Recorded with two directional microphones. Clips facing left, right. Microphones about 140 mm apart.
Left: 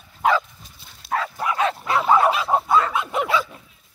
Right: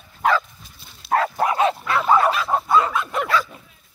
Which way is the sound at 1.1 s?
55° right (ahead or behind).